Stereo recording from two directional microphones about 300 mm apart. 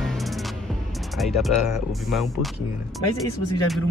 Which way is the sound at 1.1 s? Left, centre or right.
Centre.